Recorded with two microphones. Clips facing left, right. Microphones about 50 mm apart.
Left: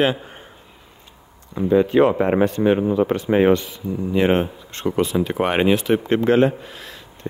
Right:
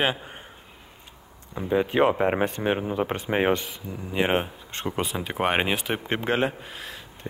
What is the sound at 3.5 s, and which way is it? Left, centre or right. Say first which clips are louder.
Speech: left 7 dB; right.